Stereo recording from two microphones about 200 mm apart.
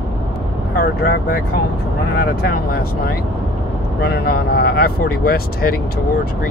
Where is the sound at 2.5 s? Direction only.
50° left (ahead or behind).